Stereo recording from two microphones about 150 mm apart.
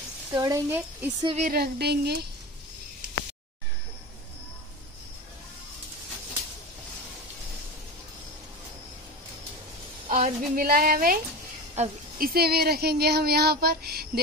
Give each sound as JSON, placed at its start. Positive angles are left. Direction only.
{"t": 0.3, "sound": "a woman's voice", "side_deg": -25}
{"t": 0.7, "sound": "speech", "side_deg": -15}
{"t": 1.4, "sound": "speech", "side_deg": -85}
{"t": 10.1, "sound": "a woman's voice", "side_deg": -70}
{"t": 11.8, "sound": "speech", "side_deg": -50}
{"t": 12.2, "sound": "speech", "side_deg": -90}